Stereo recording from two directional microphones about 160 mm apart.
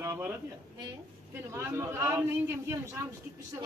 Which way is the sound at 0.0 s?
20° right (ahead or behind).